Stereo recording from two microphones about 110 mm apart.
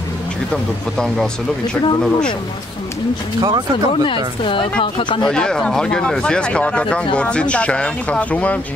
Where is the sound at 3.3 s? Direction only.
40° right (ahead or behind).